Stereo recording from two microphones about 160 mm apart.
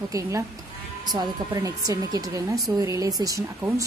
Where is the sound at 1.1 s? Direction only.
20° right (ahead or behind).